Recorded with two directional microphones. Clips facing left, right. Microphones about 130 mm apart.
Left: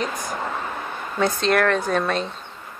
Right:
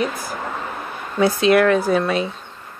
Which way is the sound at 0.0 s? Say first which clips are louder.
Right 2 dB; 5° right (ahead or behind).